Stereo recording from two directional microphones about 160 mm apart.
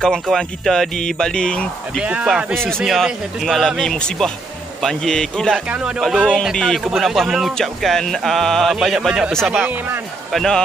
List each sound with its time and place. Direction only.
0.0 s speech: 5° left (ahead or behind)
2.0 s speech: 5° right (ahead or behind)